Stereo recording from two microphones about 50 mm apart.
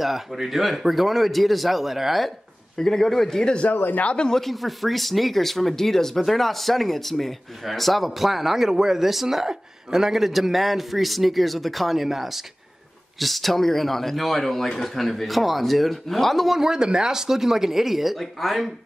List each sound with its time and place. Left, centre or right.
0.0 s speech: centre
2.8 s speech: centre
3.7 s speech: left
4.0 s speech: left
4.3 s speech: centre
16.5 s speech: centre